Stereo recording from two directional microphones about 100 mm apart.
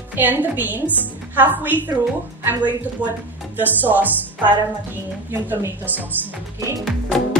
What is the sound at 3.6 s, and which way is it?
Speech, 15° right (ahead or behind).